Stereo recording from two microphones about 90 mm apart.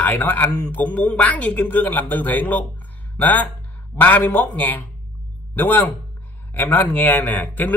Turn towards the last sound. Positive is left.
turn(degrees=20)  # may be behind; listen again after turning